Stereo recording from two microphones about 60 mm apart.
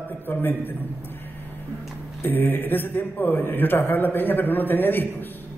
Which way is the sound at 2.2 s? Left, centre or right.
Left.